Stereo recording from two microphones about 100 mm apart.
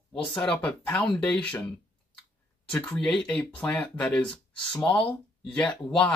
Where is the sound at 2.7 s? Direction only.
10° left (ahead or behind).